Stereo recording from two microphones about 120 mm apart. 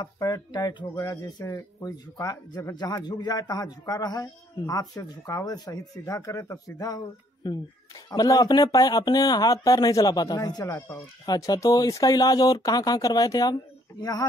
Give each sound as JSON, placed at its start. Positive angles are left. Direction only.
{"t": 0.0, "sound": "speech", "side_deg": 35}